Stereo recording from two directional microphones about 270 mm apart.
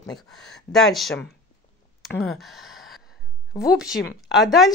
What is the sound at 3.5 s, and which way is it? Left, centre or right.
Speech, centre.